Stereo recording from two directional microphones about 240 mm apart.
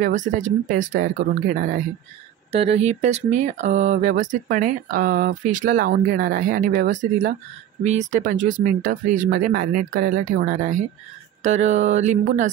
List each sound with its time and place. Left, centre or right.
0.0 s speech: right
2.5 s speech: right
11.4 s a sound: right